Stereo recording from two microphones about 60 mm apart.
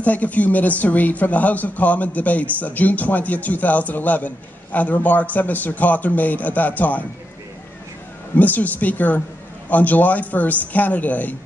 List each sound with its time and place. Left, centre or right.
0.0 s speech: left
8.4 s speech: left